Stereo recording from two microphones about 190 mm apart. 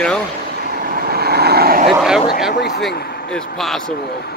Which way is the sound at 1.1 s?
55° right (ahead or behind).